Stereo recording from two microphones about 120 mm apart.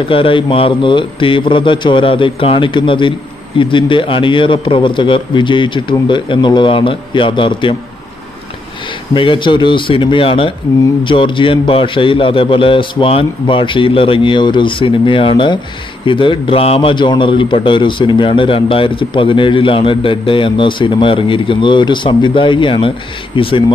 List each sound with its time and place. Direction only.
0.1 s a man's voice: 45° left (ahead or behind)
9.1 s a man's voice: 45° left (ahead or behind)